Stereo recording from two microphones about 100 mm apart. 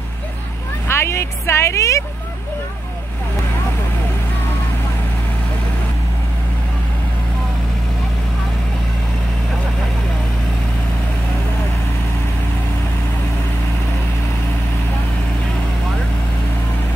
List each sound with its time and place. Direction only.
0.8 s speech: 25° left (ahead or behind)